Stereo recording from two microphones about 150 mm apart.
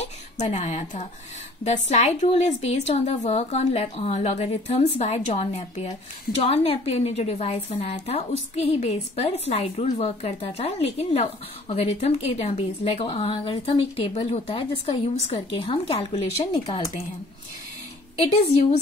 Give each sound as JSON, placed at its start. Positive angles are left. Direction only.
{"t": 0.0, "sound": "a woman's voice", "side_deg": 45}
{"t": 18.2, "sound": "a woman's voice", "side_deg": 45}